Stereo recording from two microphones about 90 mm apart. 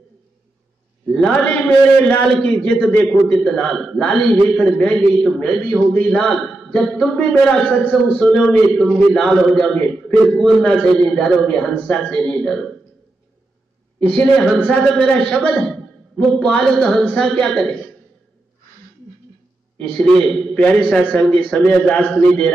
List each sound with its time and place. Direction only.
1.1 s a man's voice: 10° left (ahead or behind)
9.1 s a man's voice: 5° left (ahead or behind)
14.1 s a man's voice: 5° left (ahead or behind)
19.8 s a man's voice: 10° left (ahead or behind)